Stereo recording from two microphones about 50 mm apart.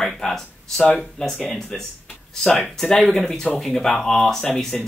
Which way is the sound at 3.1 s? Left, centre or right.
Centre.